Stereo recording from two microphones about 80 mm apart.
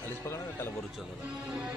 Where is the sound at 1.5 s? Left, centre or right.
Centre.